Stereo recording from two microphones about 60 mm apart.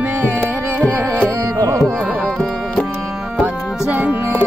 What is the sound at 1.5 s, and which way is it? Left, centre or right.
Carnatic music, right.